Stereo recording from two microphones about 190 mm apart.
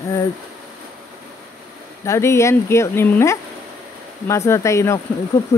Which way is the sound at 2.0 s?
15° left (ahead or behind).